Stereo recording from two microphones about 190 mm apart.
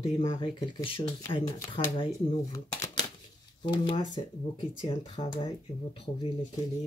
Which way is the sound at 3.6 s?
25° left (ahead or behind).